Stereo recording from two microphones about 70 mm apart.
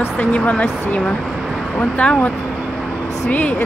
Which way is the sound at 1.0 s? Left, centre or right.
Centre.